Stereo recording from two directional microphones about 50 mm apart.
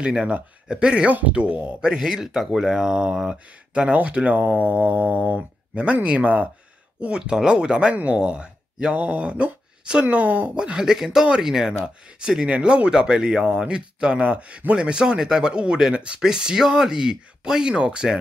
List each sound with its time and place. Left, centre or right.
0.2 s speech: centre
7.0 s speech: centre
12.4 s speech: right